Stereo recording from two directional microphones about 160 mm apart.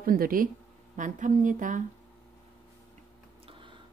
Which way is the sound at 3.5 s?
30° right (ahead or behind).